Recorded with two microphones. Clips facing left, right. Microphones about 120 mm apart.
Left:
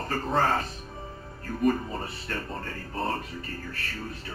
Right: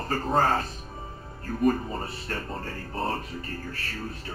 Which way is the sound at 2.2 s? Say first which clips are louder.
Right 1 dB; 35° right (ahead or behind).